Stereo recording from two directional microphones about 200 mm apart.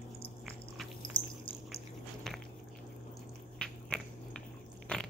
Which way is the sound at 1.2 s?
25° left (ahead or behind).